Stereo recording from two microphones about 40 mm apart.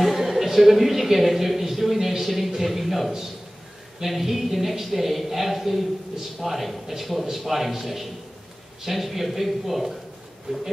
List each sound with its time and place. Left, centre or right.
0.0 s a man's voice: centre